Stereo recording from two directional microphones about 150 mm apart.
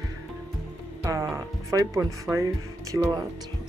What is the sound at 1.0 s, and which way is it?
Speech, 20° right (ahead or behind).